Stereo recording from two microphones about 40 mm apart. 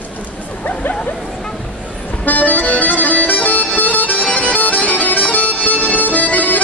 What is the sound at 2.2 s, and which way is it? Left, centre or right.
Music, left.